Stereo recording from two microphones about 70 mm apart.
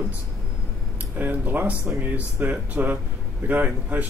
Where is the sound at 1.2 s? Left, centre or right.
Right.